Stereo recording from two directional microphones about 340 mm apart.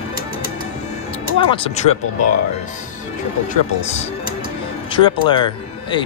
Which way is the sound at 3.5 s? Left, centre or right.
Centre.